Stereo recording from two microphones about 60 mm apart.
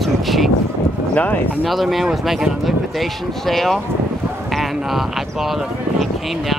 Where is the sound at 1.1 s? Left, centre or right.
Left.